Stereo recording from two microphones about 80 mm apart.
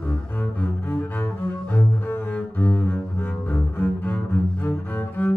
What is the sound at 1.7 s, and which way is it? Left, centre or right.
Cello, left.